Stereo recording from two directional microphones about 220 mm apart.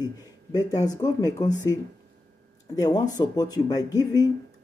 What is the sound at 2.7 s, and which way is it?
Speech, 15° left (ahead or behind).